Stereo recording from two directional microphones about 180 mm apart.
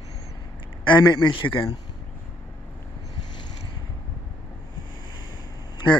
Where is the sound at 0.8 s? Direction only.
25° left (ahead or behind).